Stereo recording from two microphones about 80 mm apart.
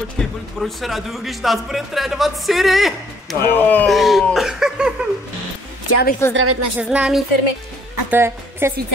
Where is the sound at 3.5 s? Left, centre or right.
Left.